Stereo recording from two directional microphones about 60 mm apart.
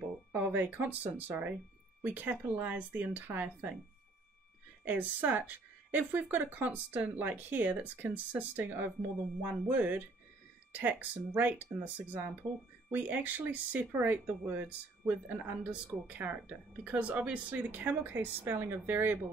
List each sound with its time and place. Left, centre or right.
0.3 s speech: right
4.8 s speech: right